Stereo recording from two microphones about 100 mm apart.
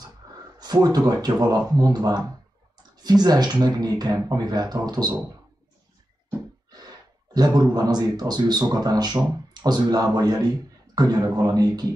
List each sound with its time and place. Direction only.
0.6 s speech: 40° right (ahead or behind)
7.3 s speech: 40° right (ahead or behind)